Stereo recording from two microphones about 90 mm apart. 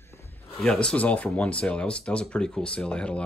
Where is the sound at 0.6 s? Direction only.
10° left (ahead or behind).